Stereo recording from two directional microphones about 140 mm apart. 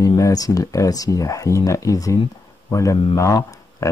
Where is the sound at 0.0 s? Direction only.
25° left (ahead or behind).